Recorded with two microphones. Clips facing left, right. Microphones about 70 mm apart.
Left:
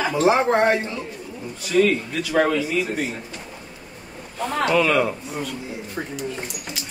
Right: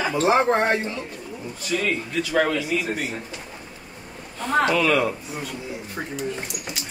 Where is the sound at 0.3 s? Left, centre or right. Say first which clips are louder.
Left 1 dB; centre.